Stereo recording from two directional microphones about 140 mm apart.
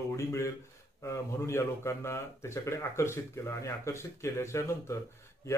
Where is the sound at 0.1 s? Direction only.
20° left (ahead or behind).